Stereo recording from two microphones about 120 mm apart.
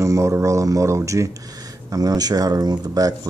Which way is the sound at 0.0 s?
25° right (ahead or behind).